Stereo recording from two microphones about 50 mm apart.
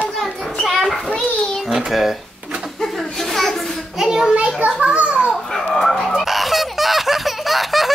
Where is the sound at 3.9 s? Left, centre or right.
Centre.